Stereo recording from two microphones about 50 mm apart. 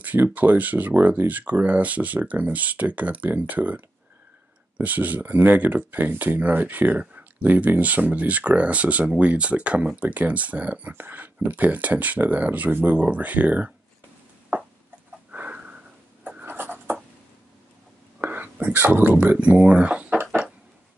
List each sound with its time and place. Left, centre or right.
0.0 s speech: right
14.5 s a sound: right
15.3 s sniff: right
16.4 s writing: right
18.2 s whispering: right
19.1 s speech: right